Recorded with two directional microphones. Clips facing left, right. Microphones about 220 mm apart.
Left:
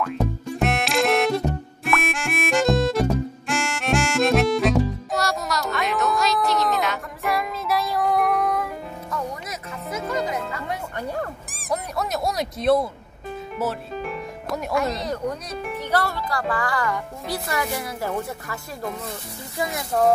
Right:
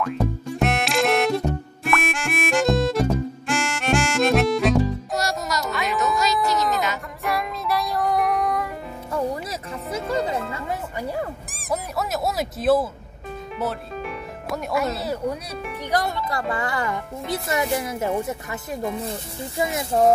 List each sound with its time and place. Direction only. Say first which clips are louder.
0.6 s music: even; centre (ahead or behind)
9.1 s music: right 6 dB; 30° right (ahead or behind)
10.7 s music: right 1 dB; 5° right (ahead or behind)
11.7 s squeak: even; centre (ahead or behind)
13.6 s speech: left 1 dB; centre (ahead or behind); by 18.6 s 20° right (ahead or behind)
19.6 s speech: right 2 dB; 25° right (ahead or behind)